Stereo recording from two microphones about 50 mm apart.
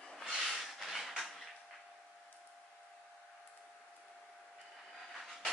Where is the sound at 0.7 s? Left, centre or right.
Centre.